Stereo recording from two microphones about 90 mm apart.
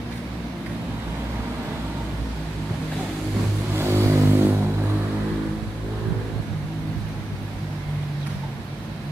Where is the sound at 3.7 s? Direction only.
30° right (ahead or behind).